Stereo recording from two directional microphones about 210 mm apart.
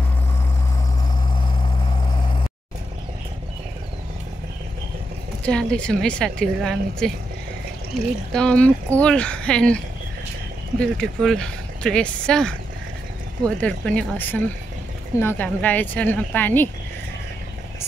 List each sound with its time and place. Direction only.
5.4 s speech: 5° left (ahead or behind)
8.3 s speech: 5° left (ahead or behind)
10.8 s speech: 5° left (ahead or behind)
13.6 s speech: 5° left (ahead or behind)